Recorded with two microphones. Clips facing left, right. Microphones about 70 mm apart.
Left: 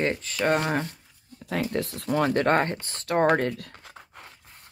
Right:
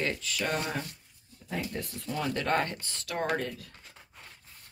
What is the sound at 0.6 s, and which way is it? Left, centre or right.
Speech, left.